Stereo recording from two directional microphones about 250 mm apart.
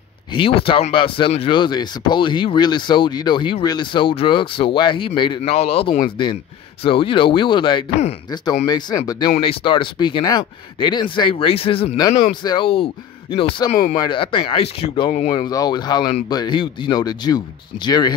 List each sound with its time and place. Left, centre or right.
0.3 s speech: left